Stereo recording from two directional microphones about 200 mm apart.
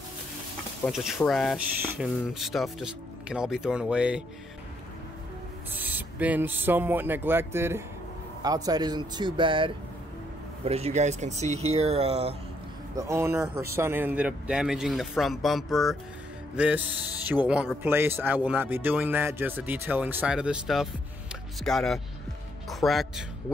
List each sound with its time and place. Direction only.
0.8 s speech: centre (ahead or behind)
5.8 s speech: 10° right (ahead or behind); by 12.4 s 30° right (ahead or behind)
12.9 s speech: 15° right (ahead or behind)